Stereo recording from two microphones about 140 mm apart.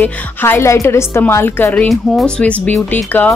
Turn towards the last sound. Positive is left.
turn(degrees=15)  # may be behind; listen again after turning